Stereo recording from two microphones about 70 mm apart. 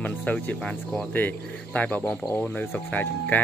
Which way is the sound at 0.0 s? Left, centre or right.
Left.